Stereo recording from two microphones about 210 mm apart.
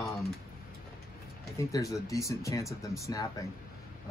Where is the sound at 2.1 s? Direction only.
15° left (ahead or behind).